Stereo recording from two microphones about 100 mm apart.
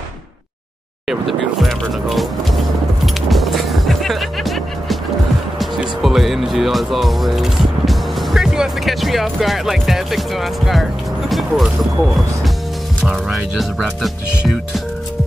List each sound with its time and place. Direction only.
1.0 s music: centre (ahead or behind)
13.0 s speech: centre (ahead or behind)